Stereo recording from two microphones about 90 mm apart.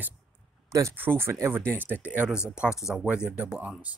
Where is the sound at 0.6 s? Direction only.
35° right (ahead or behind).